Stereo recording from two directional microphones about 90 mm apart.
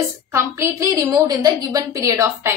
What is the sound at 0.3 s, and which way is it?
A woman's voice, 35° right (ahead or behind).